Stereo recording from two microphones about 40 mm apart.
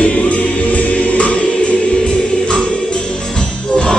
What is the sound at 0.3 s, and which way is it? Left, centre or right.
Music, left.